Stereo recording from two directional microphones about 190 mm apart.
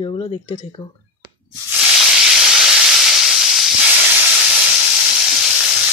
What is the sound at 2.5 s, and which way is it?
Steam, 5° right (ahead or behind).